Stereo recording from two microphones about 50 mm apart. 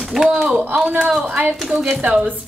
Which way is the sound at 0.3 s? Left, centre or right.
Centre.